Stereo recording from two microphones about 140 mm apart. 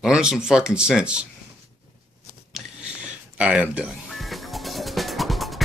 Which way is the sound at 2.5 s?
5° right (ahead or behind).